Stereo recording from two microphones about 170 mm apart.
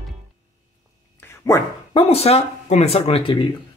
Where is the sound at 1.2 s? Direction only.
15° left (ahead or behind).